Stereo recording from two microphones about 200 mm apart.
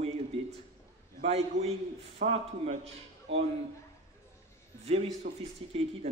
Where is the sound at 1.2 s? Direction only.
30° right (ahead or behind).